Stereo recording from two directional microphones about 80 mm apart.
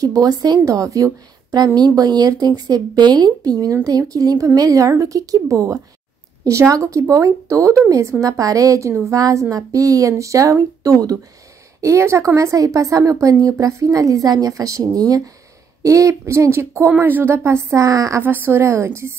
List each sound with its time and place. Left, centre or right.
0.0 s a woman's voice: right
18.2 s a woman's voice: right